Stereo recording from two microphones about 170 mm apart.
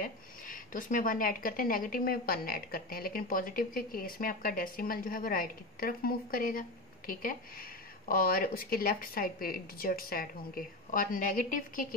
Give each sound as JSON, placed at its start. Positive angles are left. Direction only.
{"t": 0.0, "sound": "a woman's voice", "side_deg": 55}